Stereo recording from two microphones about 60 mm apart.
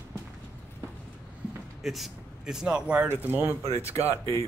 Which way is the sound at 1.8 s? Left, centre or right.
Centre.